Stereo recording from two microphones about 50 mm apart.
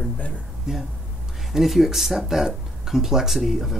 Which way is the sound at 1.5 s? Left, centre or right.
Centre.